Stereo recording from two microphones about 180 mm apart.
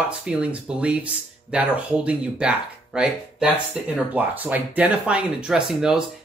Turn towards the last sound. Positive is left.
turn(degrees=-5)  # may be behind; listen again after turning